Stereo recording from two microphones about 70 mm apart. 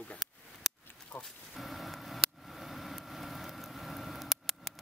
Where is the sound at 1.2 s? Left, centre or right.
Centre.